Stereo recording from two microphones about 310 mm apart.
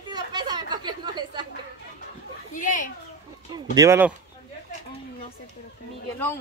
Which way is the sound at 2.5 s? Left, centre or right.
Left.